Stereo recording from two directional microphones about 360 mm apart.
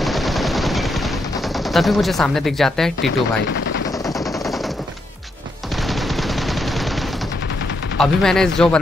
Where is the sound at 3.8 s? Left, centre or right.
Centre.